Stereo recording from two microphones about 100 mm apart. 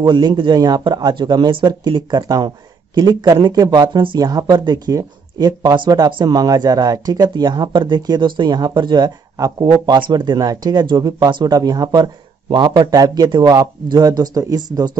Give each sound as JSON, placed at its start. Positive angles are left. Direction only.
{"t": 0.0, "sound": "speech", "side_deg": -50}